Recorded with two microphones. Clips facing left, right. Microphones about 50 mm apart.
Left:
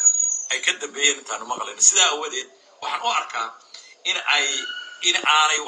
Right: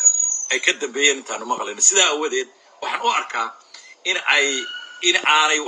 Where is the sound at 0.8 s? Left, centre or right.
Right.